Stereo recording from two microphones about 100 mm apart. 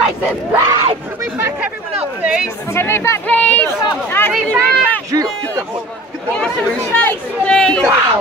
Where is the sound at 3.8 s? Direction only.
25° left (ahead or behind).